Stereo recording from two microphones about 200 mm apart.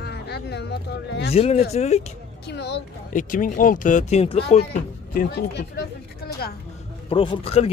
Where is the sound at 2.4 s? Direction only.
55° left (ahead or behind).